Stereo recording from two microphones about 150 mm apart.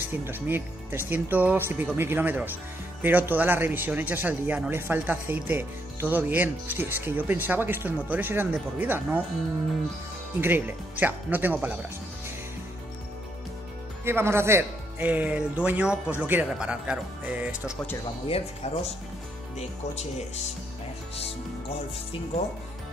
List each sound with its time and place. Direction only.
0.1 s speech: 15° right (ahead or behind)
10.4 s speech: 15° right (ahead or behind)
14.0 s speech: 15° right (ahead or behind)
18.2 s speech: 40° left (ahead or behind)